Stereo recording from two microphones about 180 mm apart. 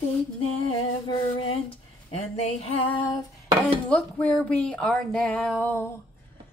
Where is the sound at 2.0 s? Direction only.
35° left (ahead or behind).